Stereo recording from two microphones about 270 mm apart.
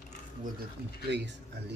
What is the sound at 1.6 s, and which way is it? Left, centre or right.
Speech, right.